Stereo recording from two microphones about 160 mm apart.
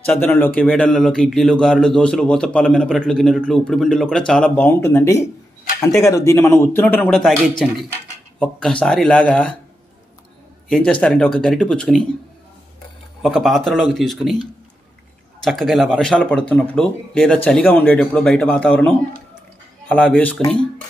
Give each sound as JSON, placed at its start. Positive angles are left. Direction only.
{"t": 0.0, "sound": "a man's voice", "side_deg": 10}
{"t": 7.1, "sound": "a man's voice", "side_deg": 0}
{"t": 10.7, "sound": "a man's voice", "side_deg": 5}
{"t": 13.2, "sound": "a man's voice", "side_deg": 0}
{"t": 15.4, "sound": "speech", "side_deg": 0}
{"t": 20.2, "sound": "speech", "side_deg": 10}